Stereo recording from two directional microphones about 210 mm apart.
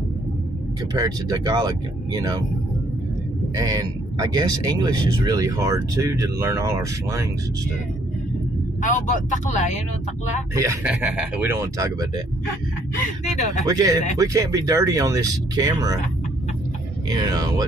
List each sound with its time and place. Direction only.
0.9 s speech: 15° right (ahead or behind)
3.5 s speech: 15° right (ahead or behind)
8.8 s speech: 35° left (ahead or behind)
10.5 s speech: 15° right (ahead or behind)
13.7 s speech: 15° right (ahead or behind)
17.1 s speech: 20° right (ahead or behind)